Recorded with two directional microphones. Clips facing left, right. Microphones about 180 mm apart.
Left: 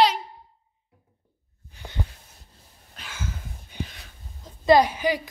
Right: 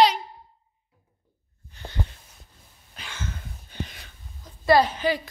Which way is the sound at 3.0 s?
5° left (ahead or behind).